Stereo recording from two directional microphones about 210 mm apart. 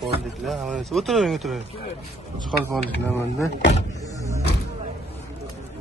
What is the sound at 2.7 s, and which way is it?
Speech, 10° left (ahead or behind).